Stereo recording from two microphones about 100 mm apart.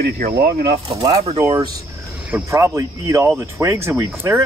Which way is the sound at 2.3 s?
25° right (ahead or behind).